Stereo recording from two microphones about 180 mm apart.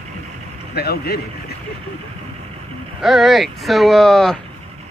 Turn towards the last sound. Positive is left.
turn(degrees=0)  # may be behind; listen again after turning